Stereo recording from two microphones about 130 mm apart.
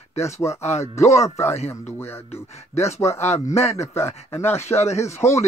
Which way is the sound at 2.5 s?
55° left (ahead or behind).